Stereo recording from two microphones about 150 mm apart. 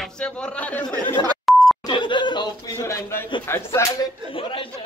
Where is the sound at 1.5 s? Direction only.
Centre (ahead or behind).